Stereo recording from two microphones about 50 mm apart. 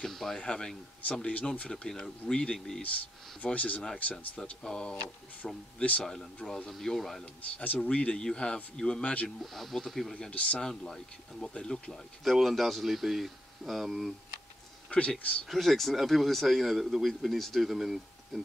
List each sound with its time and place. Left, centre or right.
0.0 s speech: centre
2.8 s speech: left
4.6 s speech: centre
5.8 s speech: left
6.0 s speech: centre
7.5 s speech: left; by 9.1 s centre
9.4 s speech: centre
11.5 s speech: centre
12.3 s speech: centre
14.9 s speech: left
15.4 s speech: centre